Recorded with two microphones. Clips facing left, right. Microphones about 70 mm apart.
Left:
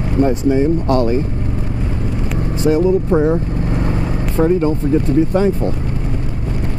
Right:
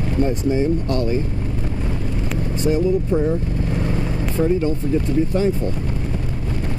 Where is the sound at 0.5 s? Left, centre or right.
Left.